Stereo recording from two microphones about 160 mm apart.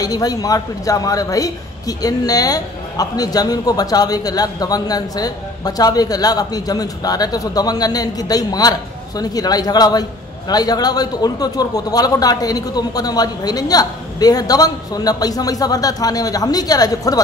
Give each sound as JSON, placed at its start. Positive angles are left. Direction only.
{"t": 0.0, "sound": "speech", "side_deg": 25}